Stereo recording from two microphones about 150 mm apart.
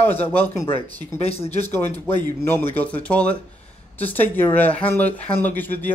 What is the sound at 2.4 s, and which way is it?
A man's voice, 15° left (ahead or behind).